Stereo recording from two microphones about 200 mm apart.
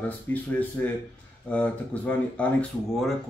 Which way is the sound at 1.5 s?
5° left (ahead or behind).